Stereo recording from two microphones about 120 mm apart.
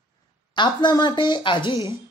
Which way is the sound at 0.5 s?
40° left (ahead or behind).